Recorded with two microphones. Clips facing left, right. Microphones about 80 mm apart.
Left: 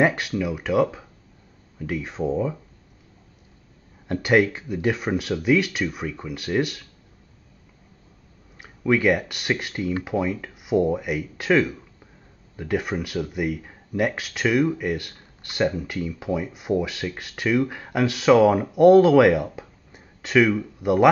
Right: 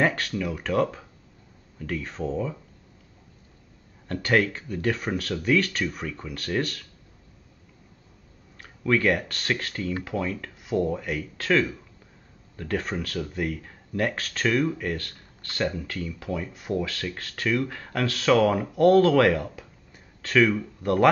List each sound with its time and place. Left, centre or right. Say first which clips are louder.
0.0 s speech: left 4 dB; centre
4.1 s speech: left 4 dB; centre
8.5 s speech: left 3 dB; centre